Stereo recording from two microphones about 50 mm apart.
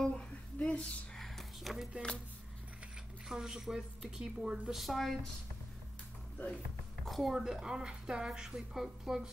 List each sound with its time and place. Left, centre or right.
0.0 s a sound: left
1.1 s a sound: centre
3.3 s a woman's voice: centre
4.7 s speech: centre
6.3 s speech: left
7.1 s speech: centre
7.3 s a woman's voice: centre